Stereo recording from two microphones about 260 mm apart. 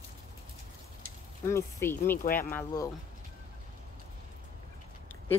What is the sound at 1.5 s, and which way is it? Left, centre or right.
Speech, centre.